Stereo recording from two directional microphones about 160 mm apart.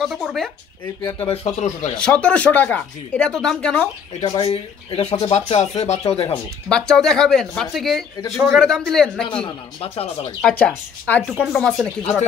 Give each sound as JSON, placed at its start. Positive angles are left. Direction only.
{"t": 0.0, "sound": "speech", "side_deg": 0}
{"t": 1.2, "sound": "speech", "side_deg": 40}
{"t": 2.0, "sound": "speech", "side_deg": 5}
{"t": 4.2, "sound": "speech", "side_deg": 40}
{"t": 6.7, "sound": "speech", "side_deg": 5}
{"t": 10.4, "sound": "speech", "side_deg": 5}